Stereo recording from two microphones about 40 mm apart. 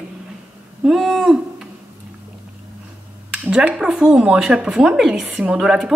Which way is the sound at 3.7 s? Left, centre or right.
Centre.